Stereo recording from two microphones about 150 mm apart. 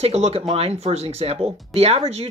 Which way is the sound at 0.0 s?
45° right (ahead or behind).